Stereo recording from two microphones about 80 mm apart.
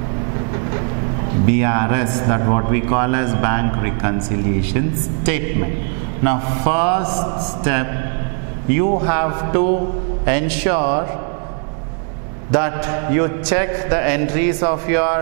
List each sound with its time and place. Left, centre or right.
1.5 s a man's voice: centre
12.5 s a man's voice: centre